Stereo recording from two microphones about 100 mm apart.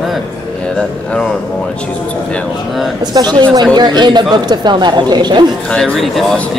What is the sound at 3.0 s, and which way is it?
A woman's voice, 45° right (ahead or behind).